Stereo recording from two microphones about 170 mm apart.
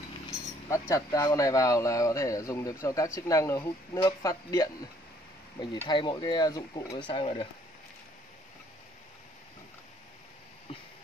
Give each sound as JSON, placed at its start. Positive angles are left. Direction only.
{"t": 0.7, "sound": "speech", "side_deg": 15}
{"t": 5.9, "sound": "speech", "side_deg": 25}